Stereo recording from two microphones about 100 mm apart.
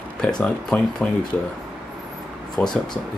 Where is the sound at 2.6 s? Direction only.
15° left (ahead or behind).